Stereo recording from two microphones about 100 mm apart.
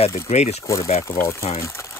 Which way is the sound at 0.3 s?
90° left.